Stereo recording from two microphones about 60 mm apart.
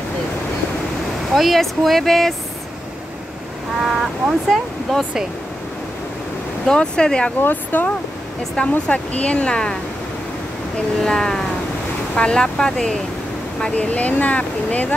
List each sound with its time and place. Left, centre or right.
1.3 s speech: centre
3.8 s speech: centre
6.7 s speech: centre
7.4 s speech: left
8.5 s speech: centre
11.0 s speech: centre